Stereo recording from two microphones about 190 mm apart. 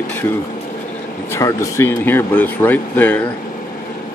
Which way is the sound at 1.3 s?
15° left (ahead or behind).